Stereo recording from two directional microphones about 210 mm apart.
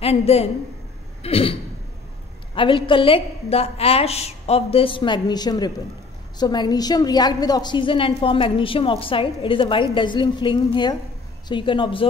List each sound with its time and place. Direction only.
0.0 s a woman's voice: 30° left (ahead or behind)